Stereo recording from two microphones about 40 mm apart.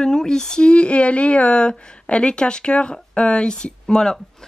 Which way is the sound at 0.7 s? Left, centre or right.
Left.